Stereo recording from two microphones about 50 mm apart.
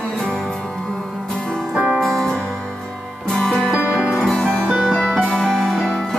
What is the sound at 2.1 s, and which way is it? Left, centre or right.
Music, centre.